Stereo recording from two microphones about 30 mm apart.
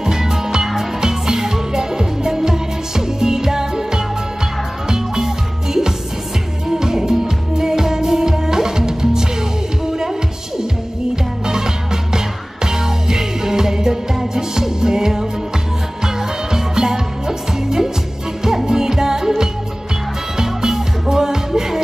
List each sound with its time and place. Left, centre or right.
0.0 s music: centre
11.4 s music: centre
16.5 s music: centre